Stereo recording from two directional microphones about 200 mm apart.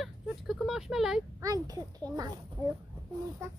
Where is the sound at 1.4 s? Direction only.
15° right (ahead or behind).